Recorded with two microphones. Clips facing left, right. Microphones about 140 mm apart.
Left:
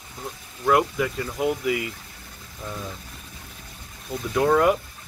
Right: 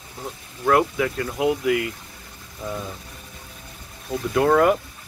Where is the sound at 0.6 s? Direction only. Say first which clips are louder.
Right 2 dB; centre (ahead or behind).